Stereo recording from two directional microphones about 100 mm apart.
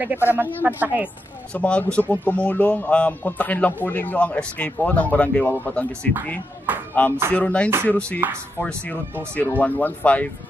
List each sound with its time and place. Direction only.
0.0 s speech: 20° right (ahead or behind)
1.5 s speech: 10° left (ahead or behind)
7.0 s speech: 10° left (ahead or behind)
8.2 s speech: 20° right (ahead or behind)
8.5 s speech: 15° left (ahead or behind)